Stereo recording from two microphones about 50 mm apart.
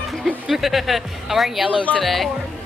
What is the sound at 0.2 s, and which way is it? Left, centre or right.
Speech, centre.